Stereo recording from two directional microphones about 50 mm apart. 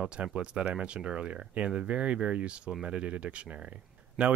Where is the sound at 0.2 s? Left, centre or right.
Right.